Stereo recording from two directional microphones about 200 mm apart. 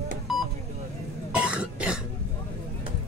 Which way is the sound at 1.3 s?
5° right (ahead or behind).